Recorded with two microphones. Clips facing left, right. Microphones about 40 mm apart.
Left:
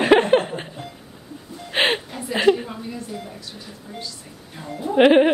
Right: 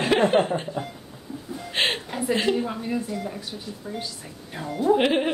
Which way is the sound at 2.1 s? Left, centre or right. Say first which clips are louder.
Right 5 dB; centre.